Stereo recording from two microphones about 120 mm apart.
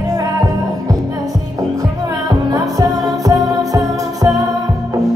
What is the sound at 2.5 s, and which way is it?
Music, 30° right (ahead or behind).